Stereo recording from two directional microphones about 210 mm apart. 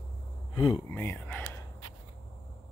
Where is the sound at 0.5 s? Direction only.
20° left (ahead or behind).